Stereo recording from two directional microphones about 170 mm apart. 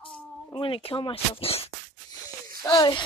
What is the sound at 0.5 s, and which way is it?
Speech, 30° left (ahead or behind).